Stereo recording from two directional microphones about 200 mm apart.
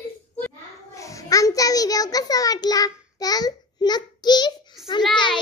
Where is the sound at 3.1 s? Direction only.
20° left (ahead or behind).